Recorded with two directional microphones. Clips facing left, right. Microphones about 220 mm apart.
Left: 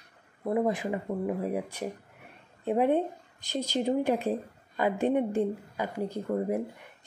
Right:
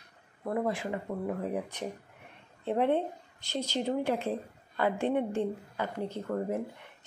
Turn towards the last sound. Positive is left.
turn(degrees=15)  # may be behind; listen again after turning